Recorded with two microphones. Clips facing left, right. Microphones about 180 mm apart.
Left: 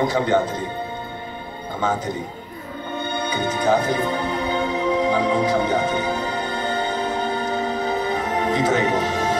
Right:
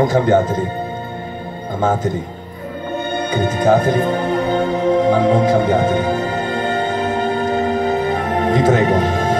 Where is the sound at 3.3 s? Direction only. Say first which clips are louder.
Right 5 dB; 50° right (ahead or behind).